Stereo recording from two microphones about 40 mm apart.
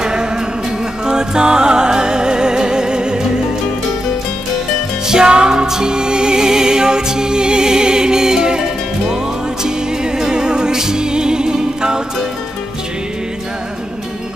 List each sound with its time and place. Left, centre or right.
0.0 s music: centre
5.0 s music: centre
10.1 s music: centre